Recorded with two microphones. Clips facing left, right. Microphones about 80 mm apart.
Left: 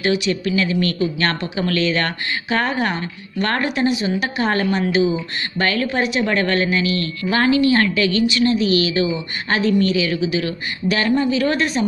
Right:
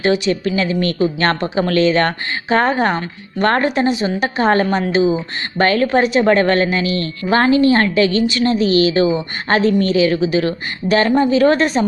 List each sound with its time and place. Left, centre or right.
0.0 s a woman's voice: right